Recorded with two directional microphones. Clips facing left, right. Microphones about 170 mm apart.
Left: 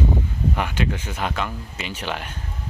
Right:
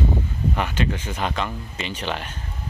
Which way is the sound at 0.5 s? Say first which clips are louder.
Right 2 dB; 10° left (ahead or behind).